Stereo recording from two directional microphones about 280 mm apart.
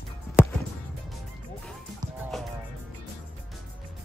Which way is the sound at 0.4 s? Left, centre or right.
Centre.